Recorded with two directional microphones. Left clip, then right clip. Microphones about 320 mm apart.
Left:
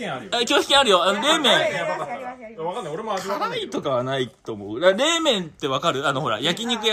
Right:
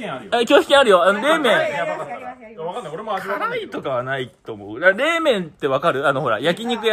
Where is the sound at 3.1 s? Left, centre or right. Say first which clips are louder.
Right 3 dB; centre.